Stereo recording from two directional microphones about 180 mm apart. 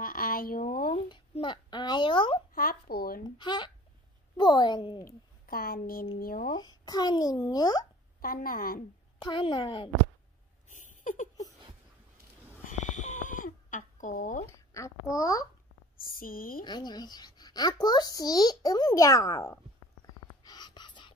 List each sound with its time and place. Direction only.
0.0 s a sound: 55° left (ahead or behind)
0.9 s a sound: 30° left (ahead or behind)
2.5 s speech: 55° left (ahead or behind)
3.3 s speech: 25° left (ahead or behind)
5.0 s speech: 55° left (ahead or behind)
6.5 s speech: 20° left (ahead or behind)
8.2 s speech: 55° left (ahead or behind)
9.2 s speech: 25° left (ahead or behind)
10.7 s a sound: 45° left (ahead or behind)
12.6 s a sound: 40° left (ahead or behind)
14.4 s speech: 15° left (ahead or behind)
16.0 s speech: 55° left (ahead or behind)
16.6 s speech: 25° left (ahead or behind)
20.4 s whispering: 25° left (ahead or behind)